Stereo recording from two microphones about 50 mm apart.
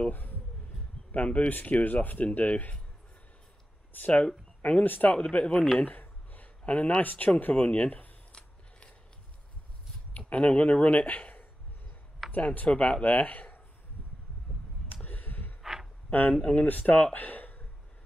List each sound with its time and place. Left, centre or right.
0.1 s a sound: left
1.1 s speech: left
1.4 s speech: left
3.9 s speech: left
5.1 s speech: left
5.8 s speech: left
8.4 s scissors: left
10.1 s speech: left
14.9 s a sound: left
15.6 s a sound: centre
16.1 s speech: left